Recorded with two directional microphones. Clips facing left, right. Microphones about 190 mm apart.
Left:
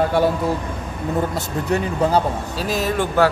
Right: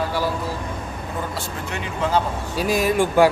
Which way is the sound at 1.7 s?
40° left (ahead or behind).